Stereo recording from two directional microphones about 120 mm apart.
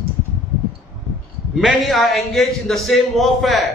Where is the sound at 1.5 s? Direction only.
Centre (ahead or behind).